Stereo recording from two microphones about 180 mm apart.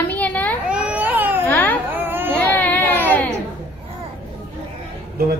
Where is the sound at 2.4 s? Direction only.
10° left (ahead or behind).